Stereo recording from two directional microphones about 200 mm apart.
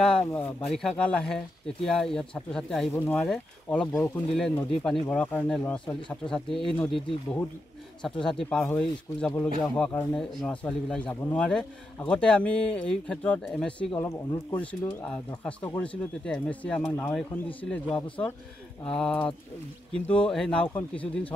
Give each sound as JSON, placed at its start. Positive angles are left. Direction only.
{"t": 0.0, "sound": "speech", "side_deg": 5}
{"t": 0.4, "sound": "speech", "side_deg": 30}
{"t": 0.7, "sound": "speech", "side_deg": 5}
{"t": 5.9, "sound": "speech", "side_deg": 25}
{"t": 6.3, "sound": "speech", "side_deg": 5}
{"t": 18.9, "sound": "speech", "side_deg": 5}